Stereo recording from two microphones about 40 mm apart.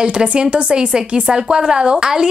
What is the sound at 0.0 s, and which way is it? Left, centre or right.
A woman's voice, right.